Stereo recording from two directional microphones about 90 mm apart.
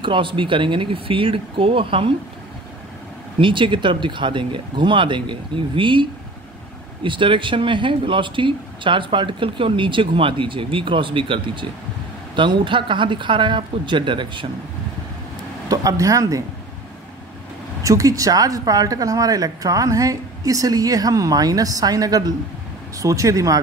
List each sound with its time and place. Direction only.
0.0 s speech: 70° right (ahead or behind); by 2.1 s 85° right
3.3 s speech: 70° right (ahead or behind)
15.7 s speech: 40° right (ahead or behind)
17.8 s speech: 40° right (ahead or behind)